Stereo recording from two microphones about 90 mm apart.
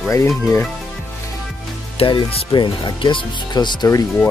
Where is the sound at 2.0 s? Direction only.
75° left (ahead or behind).